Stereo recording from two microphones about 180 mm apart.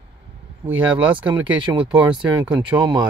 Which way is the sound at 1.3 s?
25° right (ahead or behind).